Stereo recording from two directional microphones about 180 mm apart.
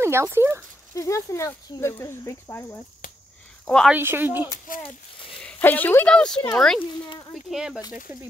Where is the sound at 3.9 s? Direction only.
10° right (ahead or behind).